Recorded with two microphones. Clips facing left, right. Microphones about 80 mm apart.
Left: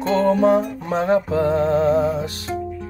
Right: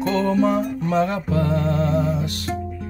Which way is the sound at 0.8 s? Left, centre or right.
Left.